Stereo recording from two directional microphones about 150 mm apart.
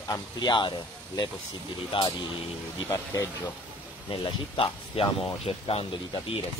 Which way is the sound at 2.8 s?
20° left (ahead or behind).